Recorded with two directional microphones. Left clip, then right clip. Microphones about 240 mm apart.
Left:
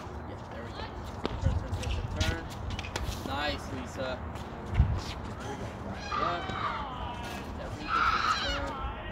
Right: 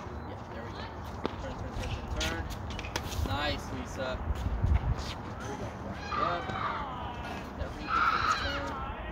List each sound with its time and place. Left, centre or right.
2.9 s a sound: centre
6.0 s speech: left
7.9 s speech: left